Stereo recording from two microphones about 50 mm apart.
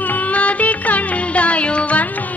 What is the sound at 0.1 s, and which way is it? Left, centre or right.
Music, left.